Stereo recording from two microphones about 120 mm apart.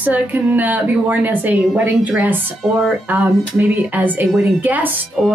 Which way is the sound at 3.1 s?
15° right (ahead or behind).